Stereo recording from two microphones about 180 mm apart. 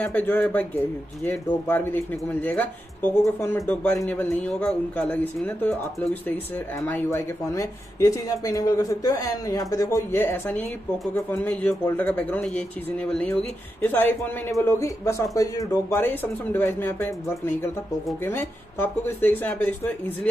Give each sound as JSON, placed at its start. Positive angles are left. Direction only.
{"t": 0.0, "sound": "speech", "side_deg": 10}
{"t": 6.9, "sound": "speech", "side_deg": 10}